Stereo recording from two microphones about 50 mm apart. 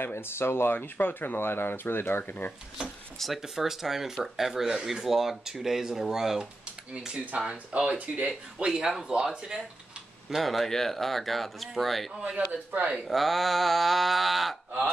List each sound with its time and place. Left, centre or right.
0.0 s speech: left
0.7 s speech: left
2.2 s speech: left
3.4 s speech: centre
7.4 s speech: centre
8.6 s speech: centre
10.3 s speech: centre
12.4 s speech: right
12.9 s speech: centre